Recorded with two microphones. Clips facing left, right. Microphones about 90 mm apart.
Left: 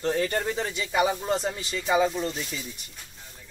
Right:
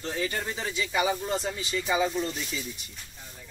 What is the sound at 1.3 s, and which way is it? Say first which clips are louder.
Speech: left 2 dB; 20° left (ahead or behind).